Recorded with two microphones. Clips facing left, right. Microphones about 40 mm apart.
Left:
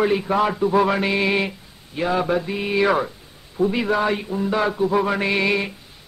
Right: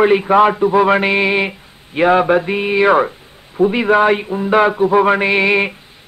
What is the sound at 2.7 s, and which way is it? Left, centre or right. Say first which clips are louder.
A man's voice: right 7 dB; right.